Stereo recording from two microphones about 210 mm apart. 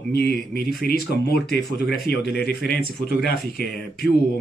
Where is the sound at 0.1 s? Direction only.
55° left (ahead or behind).